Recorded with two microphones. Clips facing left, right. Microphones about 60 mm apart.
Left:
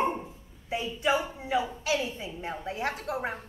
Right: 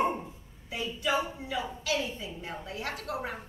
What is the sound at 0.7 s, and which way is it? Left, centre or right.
A woman's voice, left.